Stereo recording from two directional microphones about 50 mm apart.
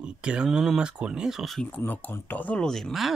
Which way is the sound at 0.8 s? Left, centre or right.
Centre.